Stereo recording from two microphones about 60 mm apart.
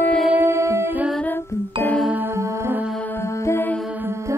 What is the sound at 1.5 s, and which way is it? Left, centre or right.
Music, left.